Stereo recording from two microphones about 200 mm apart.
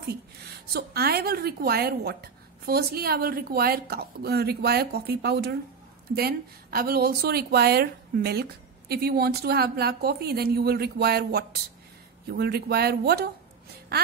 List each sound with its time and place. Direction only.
0.7 s a woman's voice: 50° right (ahead or behind)